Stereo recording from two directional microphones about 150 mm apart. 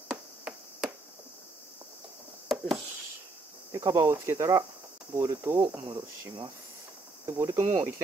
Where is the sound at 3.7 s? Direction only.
20° right (ahead or behind).